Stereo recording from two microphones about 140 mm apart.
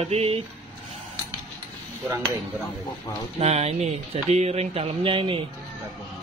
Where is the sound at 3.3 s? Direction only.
50° right (ahead or behind).